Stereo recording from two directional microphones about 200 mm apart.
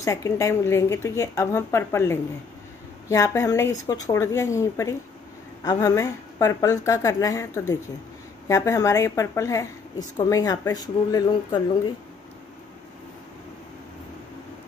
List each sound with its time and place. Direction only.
0.0 s a woman's voice: 15° left (ahead or behind)